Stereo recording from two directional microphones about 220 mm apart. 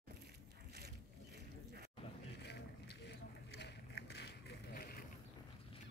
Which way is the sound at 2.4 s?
50° left (ahead or behind).